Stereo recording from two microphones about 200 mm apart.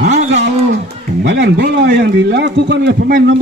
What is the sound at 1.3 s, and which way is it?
A man's voice, 60° right (ahead or behind).